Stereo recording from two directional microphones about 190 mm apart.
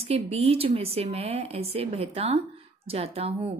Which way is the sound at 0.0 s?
35° right (ahead or behind).